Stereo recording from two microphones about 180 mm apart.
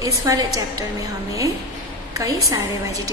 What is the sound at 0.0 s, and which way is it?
Speech, 20° right (ahead or behind).